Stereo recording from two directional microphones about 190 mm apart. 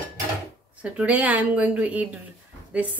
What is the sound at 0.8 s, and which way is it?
A woman's voice, 5° right (ahead or behind).